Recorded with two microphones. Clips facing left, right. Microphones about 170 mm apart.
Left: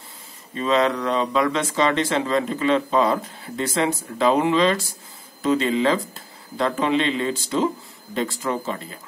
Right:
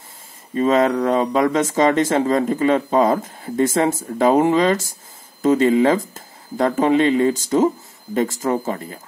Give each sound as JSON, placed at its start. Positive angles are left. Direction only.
{"t": 0.6, "sound": "speech", "side_deg": -45}